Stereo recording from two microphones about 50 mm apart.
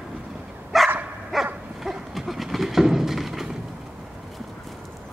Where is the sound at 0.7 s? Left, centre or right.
Centre.